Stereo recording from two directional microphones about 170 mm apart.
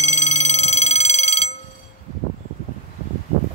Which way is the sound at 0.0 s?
45° left (ahead or behind).